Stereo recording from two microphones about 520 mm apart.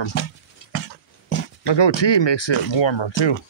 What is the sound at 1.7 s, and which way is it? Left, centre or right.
Speech, left.